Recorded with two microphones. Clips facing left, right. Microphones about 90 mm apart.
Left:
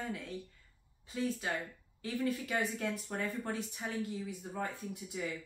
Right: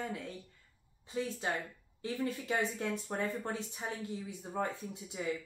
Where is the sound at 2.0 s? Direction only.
25° right (ahead or behind).